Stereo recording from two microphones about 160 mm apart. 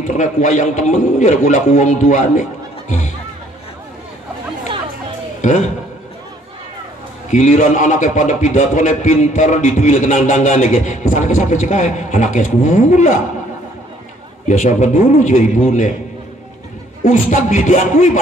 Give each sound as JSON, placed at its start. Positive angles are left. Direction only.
{"t": 0.0, "sound": "a man's voice", "side_deg": 50}
{"t": 5.4, "sound": "a man's voice", "side_deg": 50}
{"t": 7.2, "sound": "a man's voice", "side_deg": 50}
{"t": 14.5, "sound": "a man's voice", "side_deg": 50}
{"t": 17.0, "sound": "a man's voice", "side_deg": 50}